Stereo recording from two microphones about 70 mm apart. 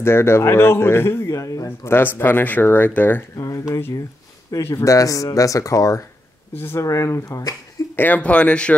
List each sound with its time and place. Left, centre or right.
0.0 s speech: left
1.9 s speech: left
3.3 s speech: left
4.6 s speech: left
6.5 s speech: left
6.8 s speech: left
7.9 s speech: left